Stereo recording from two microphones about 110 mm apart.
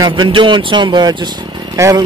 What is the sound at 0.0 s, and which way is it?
Speech, 45° right (ahead or behind).